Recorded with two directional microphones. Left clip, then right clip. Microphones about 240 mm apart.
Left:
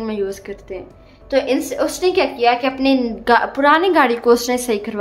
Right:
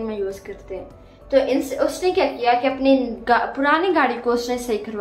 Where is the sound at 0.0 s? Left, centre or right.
Left.